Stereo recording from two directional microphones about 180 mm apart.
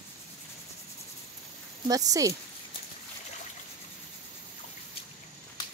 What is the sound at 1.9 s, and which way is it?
Speech, 20° right (ahead or behind).